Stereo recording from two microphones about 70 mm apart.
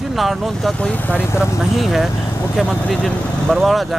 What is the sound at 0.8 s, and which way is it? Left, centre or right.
Speech, centre.